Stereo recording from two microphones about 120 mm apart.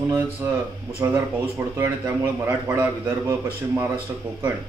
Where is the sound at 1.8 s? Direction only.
25° right (ahead or behind).